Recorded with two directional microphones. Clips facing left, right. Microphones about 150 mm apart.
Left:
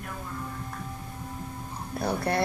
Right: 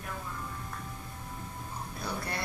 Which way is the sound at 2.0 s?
60° left (ahead or behind).